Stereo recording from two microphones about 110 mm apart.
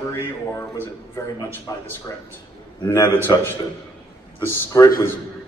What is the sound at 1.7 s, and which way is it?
Speech, 30° left (ahead or behind).